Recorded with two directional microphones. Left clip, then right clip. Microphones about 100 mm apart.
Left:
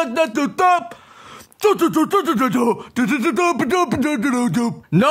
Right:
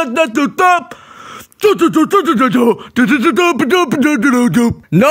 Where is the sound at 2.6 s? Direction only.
40° right (ahead or behind).